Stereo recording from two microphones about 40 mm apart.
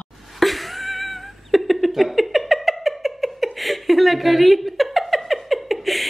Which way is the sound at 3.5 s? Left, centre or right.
Centre.